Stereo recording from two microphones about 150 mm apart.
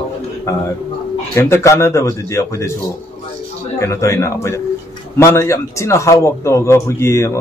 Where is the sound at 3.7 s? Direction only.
20° left (ahead or behind).